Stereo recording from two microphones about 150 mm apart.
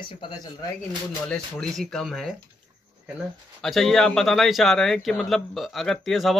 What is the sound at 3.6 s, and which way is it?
A man's voice, centre (ahead or behind).